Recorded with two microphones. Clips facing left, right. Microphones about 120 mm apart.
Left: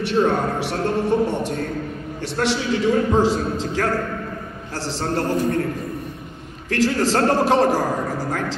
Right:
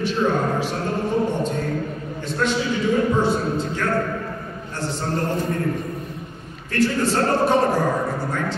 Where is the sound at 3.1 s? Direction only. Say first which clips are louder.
Left 2 dB; 90° left.